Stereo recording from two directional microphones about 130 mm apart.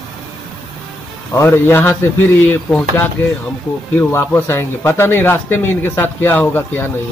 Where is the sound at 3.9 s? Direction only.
15° left (ahead or behind).